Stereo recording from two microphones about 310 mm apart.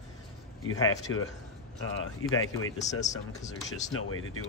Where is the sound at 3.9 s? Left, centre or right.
Left.